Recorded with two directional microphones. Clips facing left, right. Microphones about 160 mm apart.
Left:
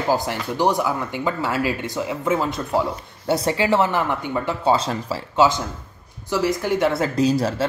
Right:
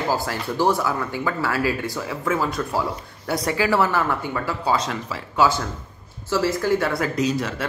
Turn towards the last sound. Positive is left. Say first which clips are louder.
# left 4 dB
turn(degrees=35)  # may be behind; listen again after turning